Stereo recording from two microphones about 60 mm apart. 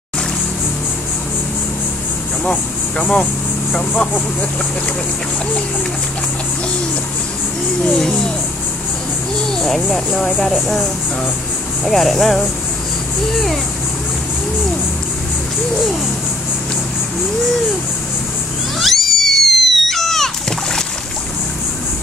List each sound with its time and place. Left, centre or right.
2.4 s speech: centre
9.5 s speech: centre
11.8 s speech: centre
18.8 s a sound: centre